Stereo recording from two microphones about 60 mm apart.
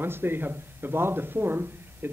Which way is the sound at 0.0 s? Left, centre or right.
Right.